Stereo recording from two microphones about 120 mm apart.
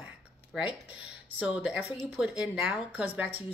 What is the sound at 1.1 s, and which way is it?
Speech, 10° right (ahead or behind).